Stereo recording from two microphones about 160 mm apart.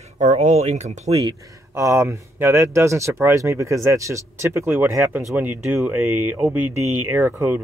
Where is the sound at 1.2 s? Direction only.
20° right (ahead or behind).